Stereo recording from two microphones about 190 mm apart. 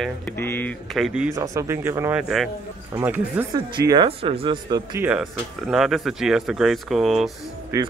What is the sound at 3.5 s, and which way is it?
Speech, 20° right (ahead or behind).